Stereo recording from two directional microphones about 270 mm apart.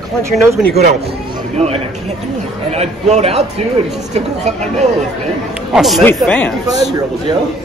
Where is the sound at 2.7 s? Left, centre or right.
Right.